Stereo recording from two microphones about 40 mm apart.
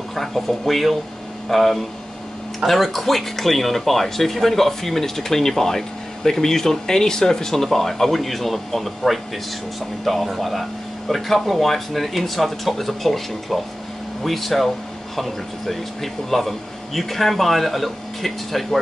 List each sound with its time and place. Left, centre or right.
0.1 s speech: centre